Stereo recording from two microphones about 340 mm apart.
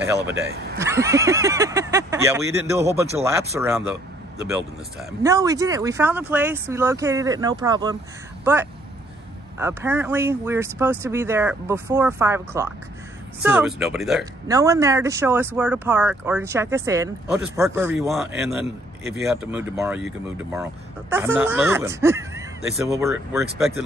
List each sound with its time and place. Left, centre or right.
0.2 s speech: right
0.7 s speech: centre
5.2 s speech: centre
9.6 s speech: centre